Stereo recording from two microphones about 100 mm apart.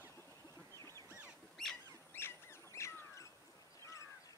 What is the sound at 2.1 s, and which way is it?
Rodents, 25° left (ahead or behind).